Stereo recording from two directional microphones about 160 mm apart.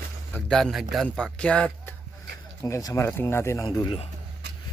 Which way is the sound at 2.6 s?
20° left (ahead or behind).